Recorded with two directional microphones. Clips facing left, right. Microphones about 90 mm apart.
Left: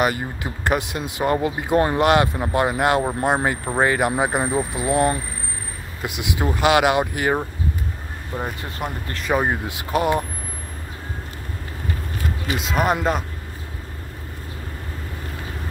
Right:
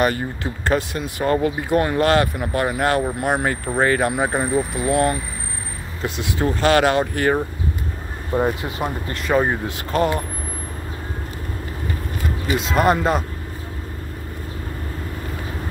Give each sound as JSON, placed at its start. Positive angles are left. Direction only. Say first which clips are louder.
{"t": 0.0, "sound": "speech", "louder": "right 2 dB", "side_deg": 15}
{"t": 8.3, "sound": "speech", "louder": "right 8 dB", "side_deg": -25}
{"t": 8.8, "sound": "speech", "louder": "right 3 dB", "side_deg": 0}
{"t": 9.3, "sound": "speech", "louder": "right 2 dB", "side_deg": 10}
{"t": 12.5, "sound": "speech", "louder": "right 3 dB", "side_deg": 0}